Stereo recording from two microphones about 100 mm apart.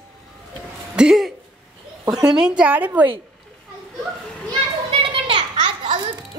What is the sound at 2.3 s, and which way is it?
Speech, 10° right (ahead or behind).